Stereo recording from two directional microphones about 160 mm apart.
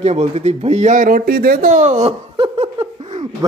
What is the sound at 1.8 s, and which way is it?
Speech, 45° right (ahead or behind).